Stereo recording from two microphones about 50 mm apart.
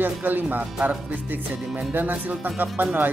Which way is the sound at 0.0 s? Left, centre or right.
Right.